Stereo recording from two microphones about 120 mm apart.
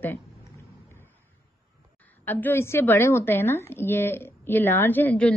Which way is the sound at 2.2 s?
15° left (ahead or behind).